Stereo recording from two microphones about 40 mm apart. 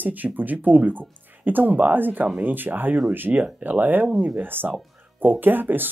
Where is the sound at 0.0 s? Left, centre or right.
Right.